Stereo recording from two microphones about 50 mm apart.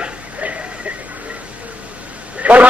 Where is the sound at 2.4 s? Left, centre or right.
Right.